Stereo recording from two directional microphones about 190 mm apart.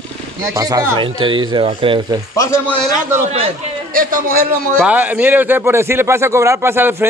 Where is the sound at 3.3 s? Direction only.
30° right (ahead or behind).